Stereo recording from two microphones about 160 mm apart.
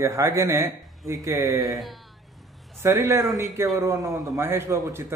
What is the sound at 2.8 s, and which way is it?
Speech, 20° right (ahead or behind).